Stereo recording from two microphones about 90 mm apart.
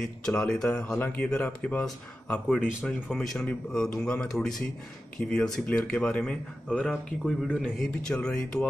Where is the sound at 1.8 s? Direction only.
5° left (ahead or behind).